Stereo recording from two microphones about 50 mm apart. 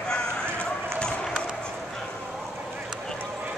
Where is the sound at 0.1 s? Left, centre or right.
Centre.